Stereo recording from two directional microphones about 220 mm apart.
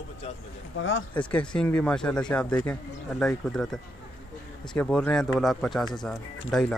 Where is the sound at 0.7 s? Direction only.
60° left (ahead or behind).